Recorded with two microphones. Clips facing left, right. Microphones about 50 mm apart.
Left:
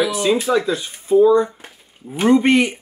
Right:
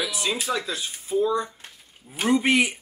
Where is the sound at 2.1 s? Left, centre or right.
Centre.